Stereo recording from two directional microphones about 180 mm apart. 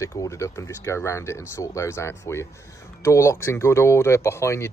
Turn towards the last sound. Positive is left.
turn(degrees=15)  # may be behind; listen again after turning